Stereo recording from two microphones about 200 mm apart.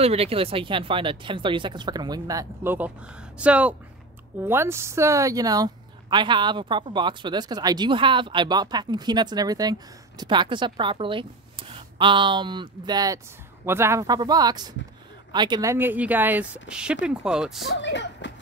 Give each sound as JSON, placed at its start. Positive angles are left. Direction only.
{"t": 0.0, "sound": "a woman's voice", "side_deg": -30}
{"t": 17.6, "sound": "speech", "side_deg": 60}